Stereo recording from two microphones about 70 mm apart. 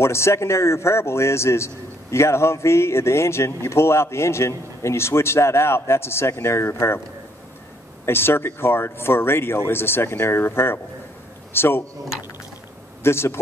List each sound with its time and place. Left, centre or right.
0.0 s a man's voice: left
8.0 s a man's voice: left
13.0 s a man's voice: left